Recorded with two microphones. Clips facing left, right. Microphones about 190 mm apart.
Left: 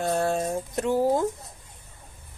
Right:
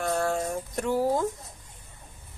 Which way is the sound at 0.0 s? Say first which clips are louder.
Left 2 dB; 20° left (ahead or behind).